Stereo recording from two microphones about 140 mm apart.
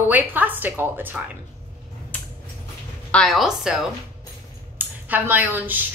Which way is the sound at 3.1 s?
Centre (ahead or behind).